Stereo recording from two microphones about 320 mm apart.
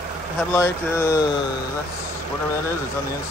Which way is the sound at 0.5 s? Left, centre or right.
Centre.